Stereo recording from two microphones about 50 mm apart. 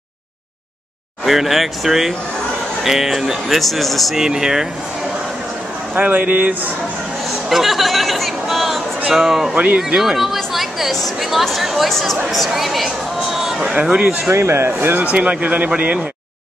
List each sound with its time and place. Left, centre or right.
1.2 s speech: centre
4.2 s speech: centre
5.9 s speech: right
7.4 s speech: centre
13.8 s speech: centre
14.3 s speech: right
15.0 s speech: right